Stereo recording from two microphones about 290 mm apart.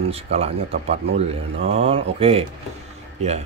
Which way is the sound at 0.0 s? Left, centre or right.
Right.